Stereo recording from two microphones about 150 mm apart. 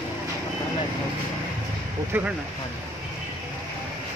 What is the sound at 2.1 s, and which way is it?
Speech, 15° right (ahead or behind).